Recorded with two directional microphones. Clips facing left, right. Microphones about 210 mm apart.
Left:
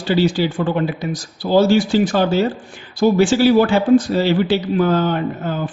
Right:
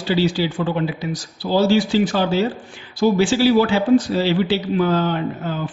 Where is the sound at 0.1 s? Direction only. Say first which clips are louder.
Left 3 dB; 50° left (ahead or behind).